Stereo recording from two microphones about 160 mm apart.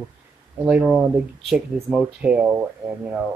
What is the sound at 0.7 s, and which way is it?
Speech, 5° right (ahead or behind).